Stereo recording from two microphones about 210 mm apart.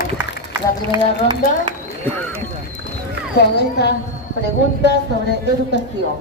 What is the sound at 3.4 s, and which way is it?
Speech, 50° left (ahead or behind).